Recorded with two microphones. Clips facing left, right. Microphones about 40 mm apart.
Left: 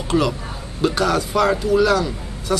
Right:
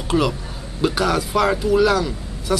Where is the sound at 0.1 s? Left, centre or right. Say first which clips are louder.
Even; centre.